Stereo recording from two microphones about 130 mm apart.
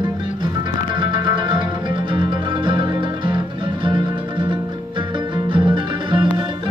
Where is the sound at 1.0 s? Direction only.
40° right (ahead or behind).